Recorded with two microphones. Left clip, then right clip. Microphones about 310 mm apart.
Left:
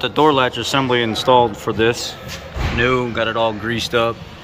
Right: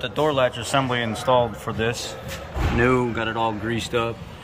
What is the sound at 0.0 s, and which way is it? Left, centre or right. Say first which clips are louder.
Speech: left 6 dB; centre.